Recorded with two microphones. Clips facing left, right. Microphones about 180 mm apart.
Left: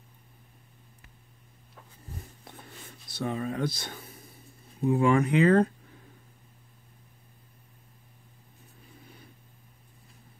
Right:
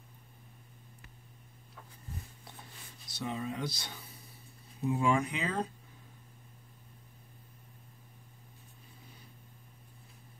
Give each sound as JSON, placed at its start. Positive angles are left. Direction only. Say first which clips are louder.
{"t": 3.1, "sound": "speech", "louder": "left 5 dB", "side_deg": 55}